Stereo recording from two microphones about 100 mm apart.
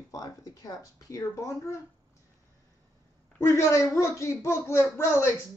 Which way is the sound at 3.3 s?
25° left (ahead or behind).